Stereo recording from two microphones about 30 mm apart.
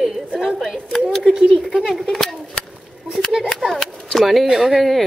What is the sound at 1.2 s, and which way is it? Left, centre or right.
Speech, centre.